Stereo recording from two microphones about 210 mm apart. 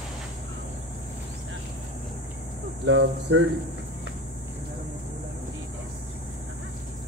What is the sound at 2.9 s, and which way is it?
Speech, 65° right (ahead or behind).